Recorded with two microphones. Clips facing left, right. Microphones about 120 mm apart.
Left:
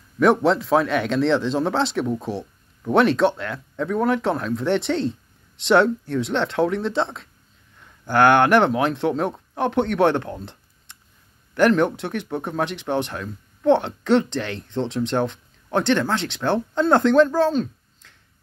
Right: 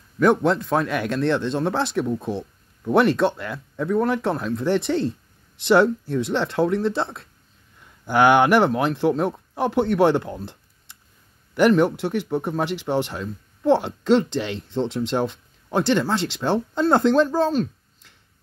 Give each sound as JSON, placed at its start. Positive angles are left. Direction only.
{"t": 0.2, "sound": "speech", "side_deg": 0}
{"t": 2.2, "sound": "a sound", "side_deg": 0}
{"t": 3.2, "sound": "speech", "side_deg": -5}